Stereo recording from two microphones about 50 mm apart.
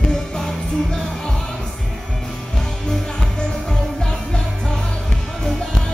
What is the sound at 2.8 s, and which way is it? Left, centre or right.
Music, centre.